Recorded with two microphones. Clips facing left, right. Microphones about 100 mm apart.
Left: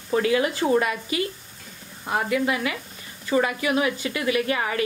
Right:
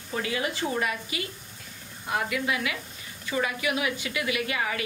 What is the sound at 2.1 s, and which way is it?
Sizzle, 35° left (ahead or behind).